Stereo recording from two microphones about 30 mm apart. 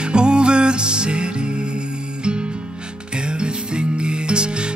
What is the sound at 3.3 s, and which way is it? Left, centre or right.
Music, right.